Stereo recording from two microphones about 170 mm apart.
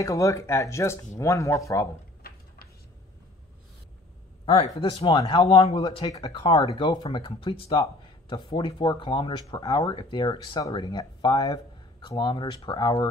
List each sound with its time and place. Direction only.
0.0 s speech: 20° left (ahead or behind)
4.7 s speech: 30° left (ahead or behind)